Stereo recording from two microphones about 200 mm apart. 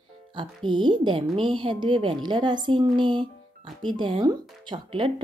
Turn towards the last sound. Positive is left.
turn(degrees=-25)  # may be behind; listen again after turning